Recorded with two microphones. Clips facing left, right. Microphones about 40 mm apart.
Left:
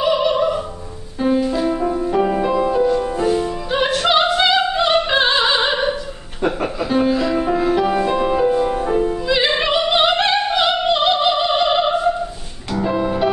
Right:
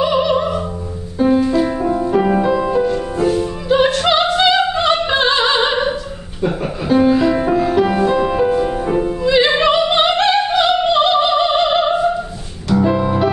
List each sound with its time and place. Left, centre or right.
0.0 s opera: centre
1.2 s music: centre
2.4 s music: centre
3.0 s music: centre
3.6 s music: centre
4.1 s opera: centre
6.8 s music: centre
7.5 s music: centre
9.6 s opera: centre
12.7 s music: centre